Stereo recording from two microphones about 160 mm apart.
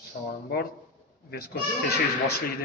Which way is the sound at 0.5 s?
80° left.